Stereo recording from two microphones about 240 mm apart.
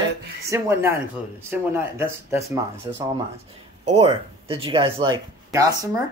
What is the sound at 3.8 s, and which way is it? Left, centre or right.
Speech, right.